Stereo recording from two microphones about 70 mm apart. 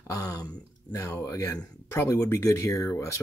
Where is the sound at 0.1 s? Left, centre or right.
Left.